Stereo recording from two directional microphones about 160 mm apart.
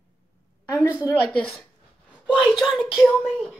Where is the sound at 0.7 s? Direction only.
10° left (ahead or behind).